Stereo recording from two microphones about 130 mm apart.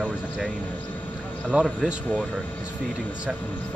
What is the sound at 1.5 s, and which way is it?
Speech, 5° right (ahead or behind).